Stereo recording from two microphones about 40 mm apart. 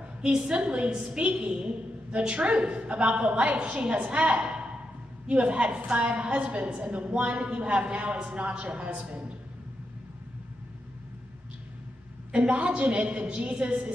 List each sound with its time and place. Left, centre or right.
0.2 s a woman's voice: right
12.3 s a woman's voice: right